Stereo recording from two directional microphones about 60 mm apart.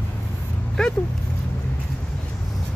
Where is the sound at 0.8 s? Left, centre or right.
Centre.